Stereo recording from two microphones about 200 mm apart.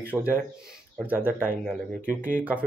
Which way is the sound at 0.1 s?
10° right (ahead or behind).